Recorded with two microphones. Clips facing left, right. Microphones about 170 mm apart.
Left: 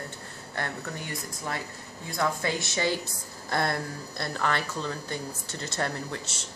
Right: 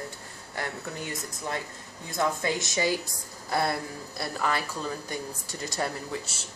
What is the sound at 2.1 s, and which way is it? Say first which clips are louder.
A woman's voice: right 1 dB; 20° right (ahead or behind).